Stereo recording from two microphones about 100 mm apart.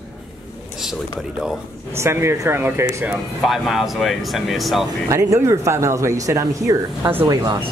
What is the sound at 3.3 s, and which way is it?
Speech, centre (ahead or behind).